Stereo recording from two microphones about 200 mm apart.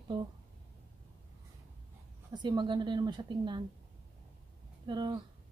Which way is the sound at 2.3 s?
20° right (ahead or behind).